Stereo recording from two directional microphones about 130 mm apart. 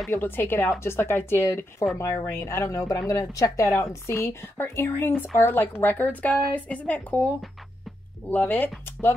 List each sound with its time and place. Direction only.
0.1 s a woman's voice: 15° left (ahead or behind)
8.3 s speech: 15° left (ahead or behind)